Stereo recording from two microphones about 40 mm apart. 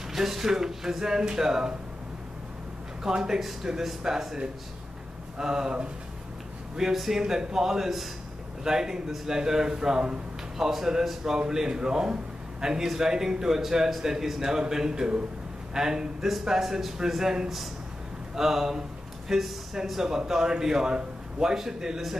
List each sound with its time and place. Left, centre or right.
0.1 s a man's voice: centre
3.0 s a man's voice: centre
5.4 s speech: centre
6.8 s a man's voice: centre